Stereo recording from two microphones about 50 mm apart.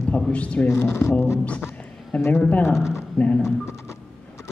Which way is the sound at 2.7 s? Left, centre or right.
Centre.